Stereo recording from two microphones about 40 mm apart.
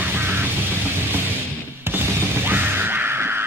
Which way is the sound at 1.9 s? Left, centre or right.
Right.